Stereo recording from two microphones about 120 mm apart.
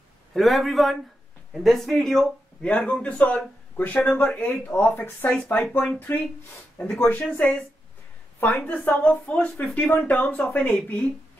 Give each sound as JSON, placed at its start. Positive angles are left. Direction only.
{"t": 0.3, "sound": "a man's voice", "side_deg": 0}